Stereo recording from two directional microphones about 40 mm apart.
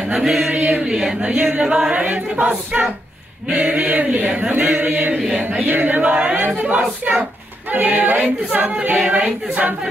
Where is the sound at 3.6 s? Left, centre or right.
Right.